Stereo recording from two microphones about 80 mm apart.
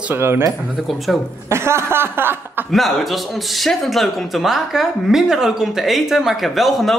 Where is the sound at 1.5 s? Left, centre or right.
Right.